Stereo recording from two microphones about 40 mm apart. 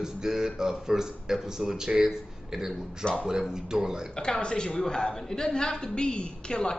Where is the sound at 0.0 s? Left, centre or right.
Centre.